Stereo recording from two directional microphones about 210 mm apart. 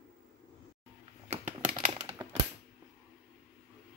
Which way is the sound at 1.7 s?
40° right (ahead or behind).